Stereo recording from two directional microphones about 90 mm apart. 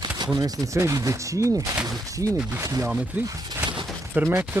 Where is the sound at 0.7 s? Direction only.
35° right (ahead or behind).